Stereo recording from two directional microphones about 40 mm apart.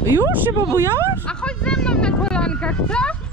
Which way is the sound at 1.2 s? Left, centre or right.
Left.